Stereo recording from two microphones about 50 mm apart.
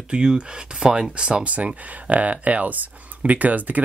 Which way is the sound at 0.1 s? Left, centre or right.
Centre.